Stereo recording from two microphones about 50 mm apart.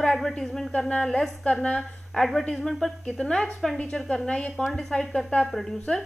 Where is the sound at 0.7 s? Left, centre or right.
Centre.